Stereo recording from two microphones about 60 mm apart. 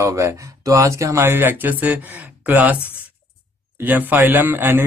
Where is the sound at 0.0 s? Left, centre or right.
Right.